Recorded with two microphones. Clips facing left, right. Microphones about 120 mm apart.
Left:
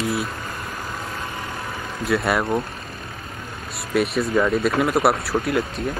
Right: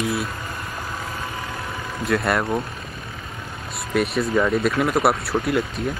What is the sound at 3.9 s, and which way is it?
Speech, centre (ahead or behind).